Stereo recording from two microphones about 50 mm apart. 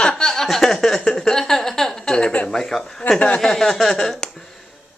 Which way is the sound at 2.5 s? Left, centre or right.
Centre.